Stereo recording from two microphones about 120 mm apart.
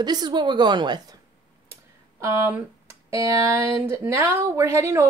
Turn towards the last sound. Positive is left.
turn(degrees=-25)  # may be behind; listen again after turning